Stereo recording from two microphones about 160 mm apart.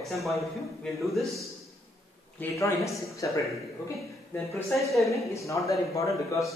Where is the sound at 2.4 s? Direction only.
20° left (ahead or behind).